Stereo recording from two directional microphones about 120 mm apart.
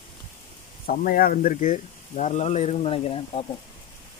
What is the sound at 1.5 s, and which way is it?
Speech, 90° left.